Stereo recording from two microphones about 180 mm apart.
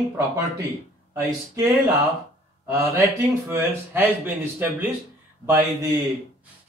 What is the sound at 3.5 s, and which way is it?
Speech, 10° right (ahead or behind).